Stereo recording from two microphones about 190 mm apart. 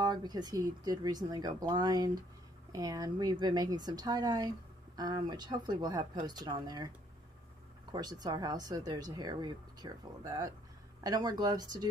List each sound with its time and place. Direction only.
0.0 s speech: 20° right (ahead or behind)
7.9 s speech: 20° right (ahead or behind)